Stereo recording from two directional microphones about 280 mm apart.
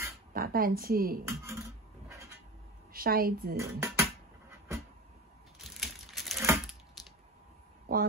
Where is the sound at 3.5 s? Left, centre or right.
Centre.